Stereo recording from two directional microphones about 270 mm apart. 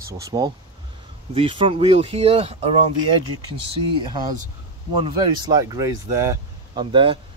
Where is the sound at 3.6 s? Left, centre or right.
Centre.